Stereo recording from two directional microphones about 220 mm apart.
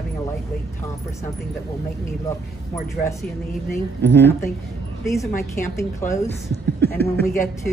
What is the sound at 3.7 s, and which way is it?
Speech, 10° left (ahead or behind).